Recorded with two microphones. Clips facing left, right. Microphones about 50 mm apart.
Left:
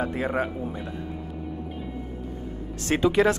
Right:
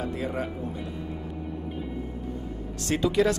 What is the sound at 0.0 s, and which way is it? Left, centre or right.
Speech, left.